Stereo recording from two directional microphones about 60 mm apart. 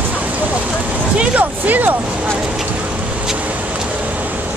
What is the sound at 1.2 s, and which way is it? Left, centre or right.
Speech, right.